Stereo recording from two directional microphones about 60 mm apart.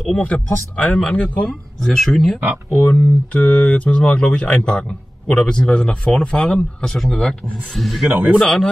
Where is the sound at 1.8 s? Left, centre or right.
Centre.